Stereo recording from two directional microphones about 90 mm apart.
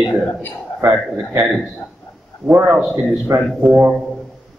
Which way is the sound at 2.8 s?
5° right (ahead or behind).